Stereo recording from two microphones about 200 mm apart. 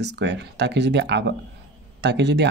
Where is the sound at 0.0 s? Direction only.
60° right (ahead or behind).